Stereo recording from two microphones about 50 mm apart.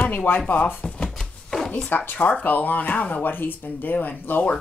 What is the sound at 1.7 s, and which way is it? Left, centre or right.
Speech, left.